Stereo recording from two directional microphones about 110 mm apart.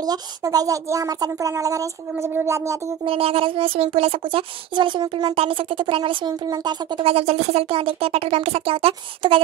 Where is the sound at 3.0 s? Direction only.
55° right (ahead or behind); by 7.0 s 40° right (ahead or behind).